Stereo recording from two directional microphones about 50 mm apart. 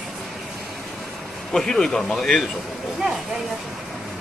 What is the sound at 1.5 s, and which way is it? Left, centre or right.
Speech, centre.